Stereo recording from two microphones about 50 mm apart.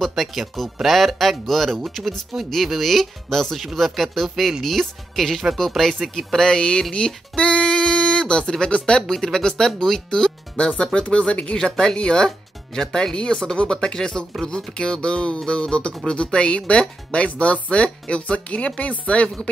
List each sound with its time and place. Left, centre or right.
0.1 s speech: centre
7.3 s a sound: left
9.1 s speech: centre
11.5 s speech: centre